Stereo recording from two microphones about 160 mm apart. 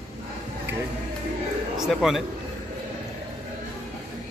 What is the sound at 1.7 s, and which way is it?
Speech, 5° right (ahead or behind).